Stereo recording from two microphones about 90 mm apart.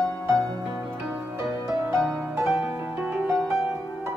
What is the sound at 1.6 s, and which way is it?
Music, 30° right (ahead or behind).